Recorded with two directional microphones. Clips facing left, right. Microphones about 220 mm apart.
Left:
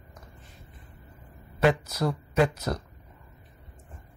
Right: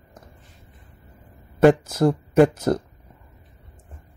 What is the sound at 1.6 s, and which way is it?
Speech, 50° right (ahead or behind).